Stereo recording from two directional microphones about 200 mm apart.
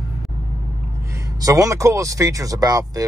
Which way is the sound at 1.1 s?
15° right (ahead or behind).